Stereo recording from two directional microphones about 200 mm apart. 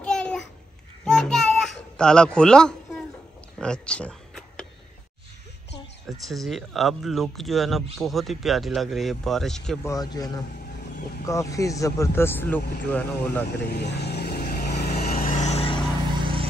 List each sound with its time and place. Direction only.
0.0 s babbling: 5° left (ahead or behind)
1.0 s a sound: 5° left (ahead or behind)
6.0 s speech: centre (ahead or behind)
9.8 s speech: 20° left (ahead or behind)
13.6 s vehicle: 55° left (ahead or behind); by 15.8 s 30° left (ahead or behind)
16.2 s a sound: 25° right (ahead or behind)